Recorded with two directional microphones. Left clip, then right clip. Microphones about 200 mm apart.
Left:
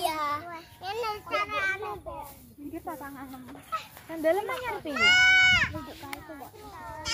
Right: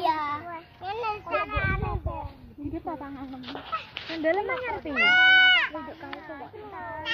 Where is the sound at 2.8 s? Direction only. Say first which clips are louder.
Right 3 dB; 30° right (ahead or behind).